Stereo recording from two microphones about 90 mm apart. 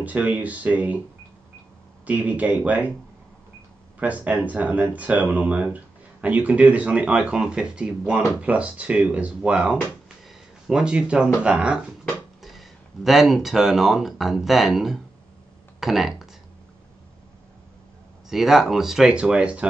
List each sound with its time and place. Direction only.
0.0 s speech: 15° right (ahead or behind)
2.0 s speech: 15° right (ahead or behind)
4.0 s speech: 15° right (ahead or behind)
18.3 s speech: 5° right (ahead or behind)